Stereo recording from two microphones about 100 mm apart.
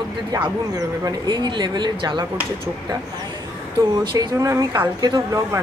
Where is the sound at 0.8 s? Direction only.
40° right (ahead or behind).